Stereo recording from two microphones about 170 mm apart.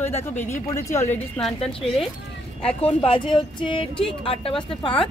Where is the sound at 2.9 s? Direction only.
30° left (ahead or behind).